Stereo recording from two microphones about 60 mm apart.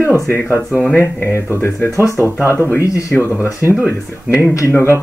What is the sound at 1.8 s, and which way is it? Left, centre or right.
Speech, left.